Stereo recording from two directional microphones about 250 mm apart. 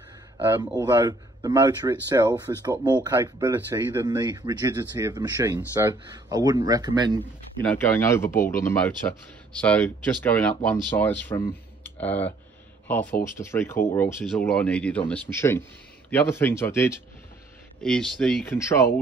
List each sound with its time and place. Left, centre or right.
0.4 s speech: centre
7.7 s speech: centre